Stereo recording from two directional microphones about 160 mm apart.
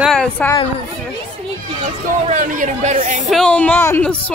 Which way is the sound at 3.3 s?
5° left (ahead or behind).